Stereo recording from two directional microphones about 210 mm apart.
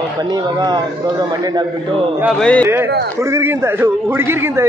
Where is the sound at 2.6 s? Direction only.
10° right (ahead or behind).